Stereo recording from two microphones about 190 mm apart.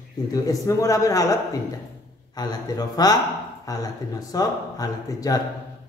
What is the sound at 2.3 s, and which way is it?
Speech, 20° left (ahead or behind).